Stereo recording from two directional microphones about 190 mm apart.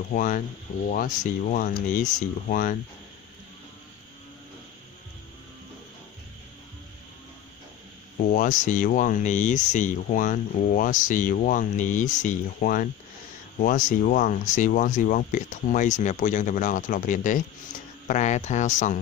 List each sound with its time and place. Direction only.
0.1 s speech: 45° left (ahead or behind)
8.3 s speech: 45° left (ahead or behind)